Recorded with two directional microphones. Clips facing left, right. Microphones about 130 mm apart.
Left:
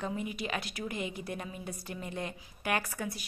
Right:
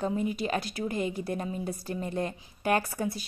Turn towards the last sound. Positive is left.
turn(degrees=-30)  # may be behind; listen again after turning